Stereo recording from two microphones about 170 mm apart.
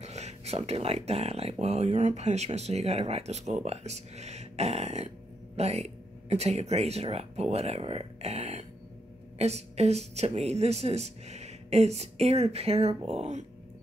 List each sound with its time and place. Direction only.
0.0 s speech: 40° right (ahead or behind)